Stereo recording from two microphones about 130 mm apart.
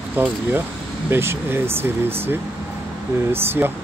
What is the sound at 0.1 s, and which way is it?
Speech, 15° right (ahead or behind).